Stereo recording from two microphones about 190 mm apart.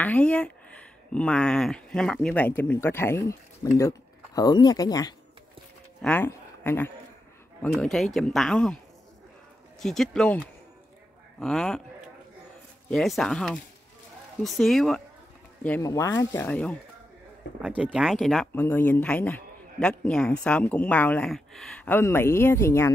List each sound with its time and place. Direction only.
0.0 s a man's voice: 5° left (ahead or behind)
9.8 s speech: centre (ahead or behind)
12.9 s speech: centre (ahead or behind)
15.6 s a man's voice: 10° left (ahead or behind)
17.6 s a man's voice: 5° right (ahead or behind); by 22.8 s 15° left (ahead or behind)